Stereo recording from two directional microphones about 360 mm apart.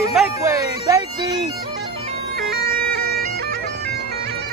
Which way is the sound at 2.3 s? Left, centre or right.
Right.